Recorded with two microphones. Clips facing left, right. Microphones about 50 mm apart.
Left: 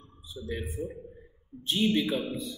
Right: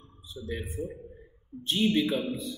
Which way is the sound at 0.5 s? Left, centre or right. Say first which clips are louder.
Even; centre.